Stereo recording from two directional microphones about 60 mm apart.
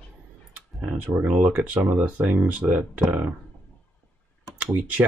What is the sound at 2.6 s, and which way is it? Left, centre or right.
Speech, right.